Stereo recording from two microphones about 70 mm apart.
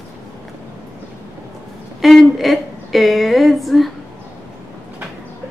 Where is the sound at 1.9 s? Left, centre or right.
Centre.